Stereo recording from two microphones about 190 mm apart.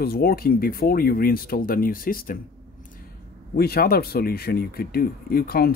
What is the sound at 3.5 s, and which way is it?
Speech, 55° left (ahead or behind).